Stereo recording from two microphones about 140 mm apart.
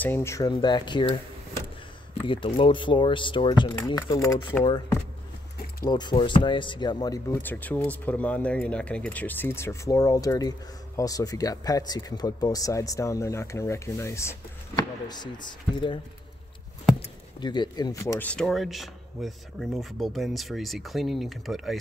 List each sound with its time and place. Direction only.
0.0 s speech: 15° left (ahead or behind)
0.5 s speech: 30° left (ahead or behind)
2.2 s speech: 40° left (ahead or behind)
5.9 s speech: 30° left (ahead or behind)
7.4 s speech: 15° left (ahead or behind)
14.8 s speech: 30° left (ahead or behind)
17.4 s speech: 30° left (ahead or behind)
18.2 s speech: 5° left (ahead or behind)